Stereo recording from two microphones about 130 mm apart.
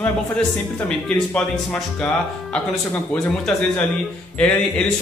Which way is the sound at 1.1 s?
10° left (ahead or behind).